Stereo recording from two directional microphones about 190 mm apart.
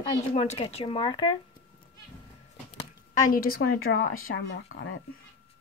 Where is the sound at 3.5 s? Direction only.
90° left.